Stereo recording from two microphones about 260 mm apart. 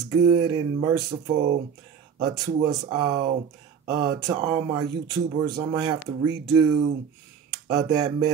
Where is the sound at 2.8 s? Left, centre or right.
Centre.